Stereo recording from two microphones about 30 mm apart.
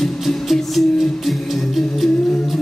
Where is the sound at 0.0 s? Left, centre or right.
Centre.